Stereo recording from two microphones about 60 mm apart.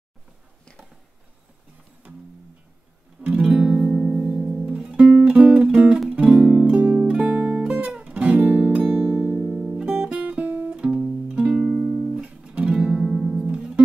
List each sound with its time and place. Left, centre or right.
3.2 s music: centre; by 9.4 s right
9.4 s music: centre
10.0 s guitar: right
11.0 s music: centre
11.3 s music: centre